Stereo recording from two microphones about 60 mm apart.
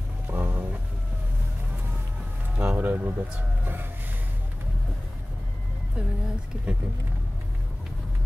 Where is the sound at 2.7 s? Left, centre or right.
Right.